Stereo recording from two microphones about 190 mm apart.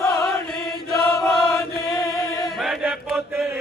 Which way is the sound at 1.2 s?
Centre (ahead or behind).